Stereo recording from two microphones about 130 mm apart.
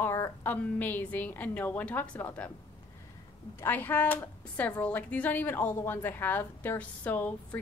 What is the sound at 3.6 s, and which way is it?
A woman's voice, 15° left (ahead or behind).